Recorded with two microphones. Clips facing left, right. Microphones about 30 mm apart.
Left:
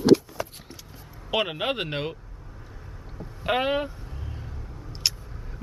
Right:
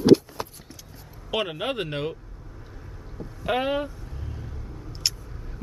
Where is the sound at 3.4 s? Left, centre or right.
Centre.